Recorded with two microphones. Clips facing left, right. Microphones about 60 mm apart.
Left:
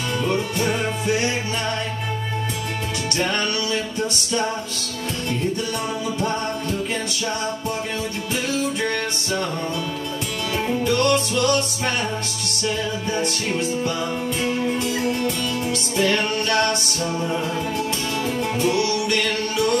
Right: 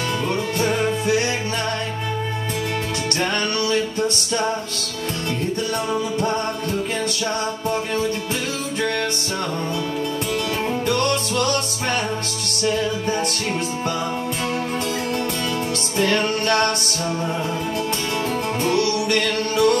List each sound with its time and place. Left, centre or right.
11.0 s music: right
16.0 s music: right
18.6 s music: right